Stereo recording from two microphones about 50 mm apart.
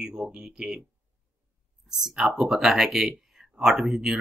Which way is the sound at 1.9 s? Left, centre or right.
Centre.